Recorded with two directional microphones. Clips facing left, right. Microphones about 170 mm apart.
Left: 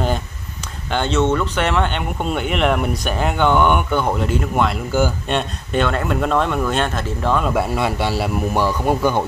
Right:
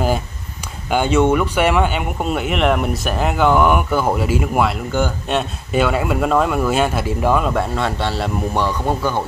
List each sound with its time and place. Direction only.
0.8 s speech: 10° right (ahead or behind)
7.4 s a man's voice: 10° left (ahead or behind)